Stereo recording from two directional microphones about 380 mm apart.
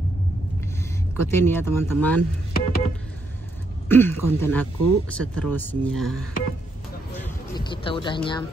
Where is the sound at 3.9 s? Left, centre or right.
Centre.